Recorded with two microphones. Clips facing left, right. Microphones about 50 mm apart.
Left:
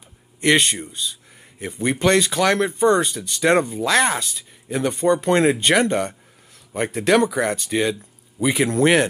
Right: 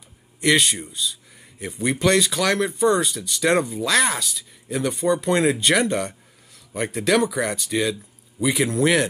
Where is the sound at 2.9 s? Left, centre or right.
Left.